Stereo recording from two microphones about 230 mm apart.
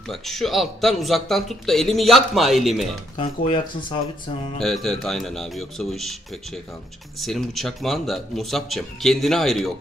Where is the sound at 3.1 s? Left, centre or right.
Left.